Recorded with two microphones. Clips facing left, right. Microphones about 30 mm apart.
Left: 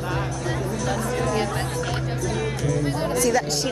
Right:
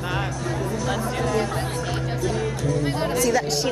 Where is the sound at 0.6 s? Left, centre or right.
Centre.